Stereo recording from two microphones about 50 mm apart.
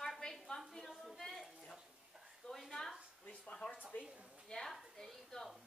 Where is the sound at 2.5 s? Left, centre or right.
Centre.